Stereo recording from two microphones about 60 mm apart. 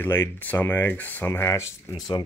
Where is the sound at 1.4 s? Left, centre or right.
Left.